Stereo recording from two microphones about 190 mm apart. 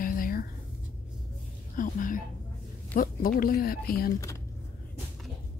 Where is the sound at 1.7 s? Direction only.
45° left (ahead or behind).